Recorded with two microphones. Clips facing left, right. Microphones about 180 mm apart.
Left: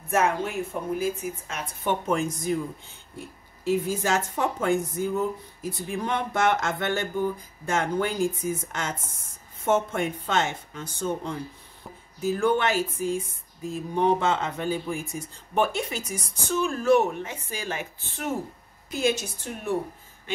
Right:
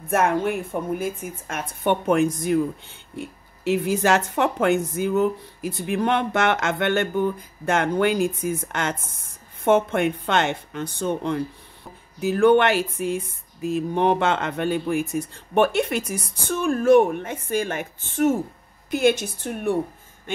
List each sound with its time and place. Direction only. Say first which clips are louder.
0.1 s a woman's voice: right 4 dB; 55° right (ahead or behind)
18.9 s speech: right 6 dB; 60° right (ahead or behind)